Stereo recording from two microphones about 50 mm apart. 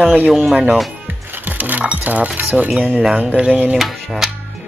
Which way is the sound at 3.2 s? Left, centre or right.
Right.